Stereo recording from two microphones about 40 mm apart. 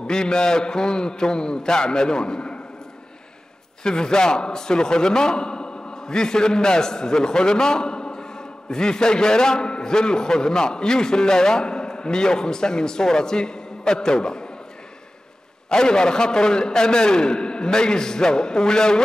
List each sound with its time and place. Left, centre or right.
0.0 s a man's voice: centre
3.8 s a man's voice: centre
15.7 s a man's voice: centre